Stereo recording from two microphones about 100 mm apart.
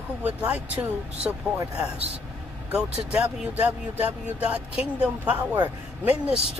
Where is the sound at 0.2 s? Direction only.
15° right (ahead or behind).